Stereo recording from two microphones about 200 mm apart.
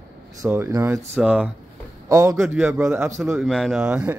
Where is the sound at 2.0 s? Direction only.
15° right (ahead or behind).